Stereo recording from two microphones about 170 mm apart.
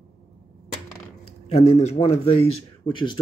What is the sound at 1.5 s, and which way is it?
Speech, 35° left (ahead or behind).